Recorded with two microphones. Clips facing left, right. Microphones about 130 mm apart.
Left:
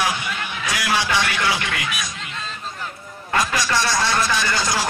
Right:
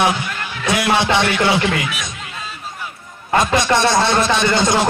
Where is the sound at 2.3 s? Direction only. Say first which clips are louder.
Right 1 dB; 10° right (ahead or behind).